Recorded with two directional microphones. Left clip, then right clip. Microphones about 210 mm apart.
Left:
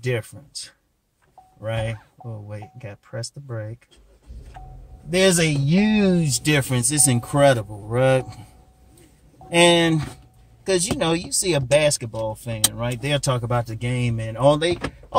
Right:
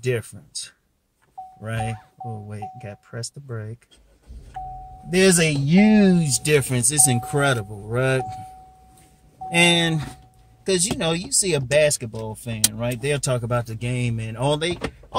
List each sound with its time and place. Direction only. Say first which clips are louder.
0.0 s speech: right 1 dB; 15° right (ahead or behind)
5.1 s speech: even; 20° right (ahead or behind)
9.5 s speech: left 2 dB; 10° right (ahead or behind)